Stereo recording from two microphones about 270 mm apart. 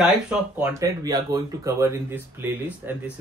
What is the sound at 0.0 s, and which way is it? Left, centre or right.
Speech, centre.